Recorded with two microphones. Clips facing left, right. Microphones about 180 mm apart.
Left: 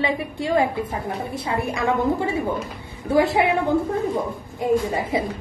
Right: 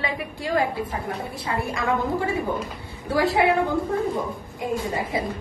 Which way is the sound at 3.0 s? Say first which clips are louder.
Left 3 dB; 20° left (ahead or behind).